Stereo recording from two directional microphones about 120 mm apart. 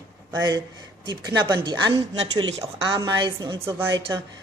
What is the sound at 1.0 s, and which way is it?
Speech, 35° right (ahead or behind).